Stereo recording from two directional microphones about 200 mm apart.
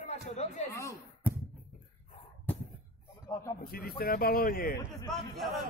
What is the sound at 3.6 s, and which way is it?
A man's voice, 50° left (ahead or behind).